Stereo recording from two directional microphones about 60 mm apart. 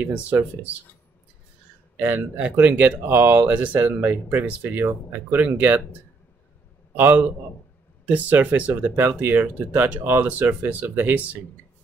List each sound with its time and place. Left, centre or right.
0.0 s speech: right
2.0 s speech: right
7.0 s speech: right